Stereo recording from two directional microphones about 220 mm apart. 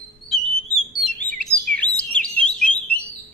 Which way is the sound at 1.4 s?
5° left (ahead or behind).